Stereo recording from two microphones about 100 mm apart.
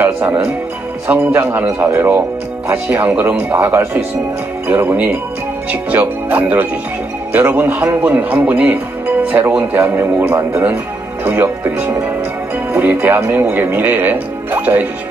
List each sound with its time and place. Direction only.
0.0 s music: 20° right (ahead or behind)
1.0 s speech: 20° right (ahead or behind)